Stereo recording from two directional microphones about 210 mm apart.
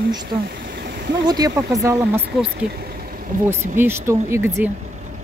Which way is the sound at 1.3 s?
15° right (ahead or behind).